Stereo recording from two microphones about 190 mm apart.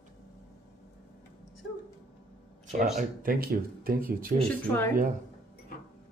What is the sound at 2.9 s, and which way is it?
Speech, 50° right (ahead or behind).